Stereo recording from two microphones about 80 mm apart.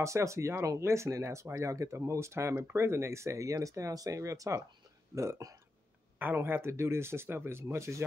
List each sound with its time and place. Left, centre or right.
0.0 s speech: right
6.1 s speech: right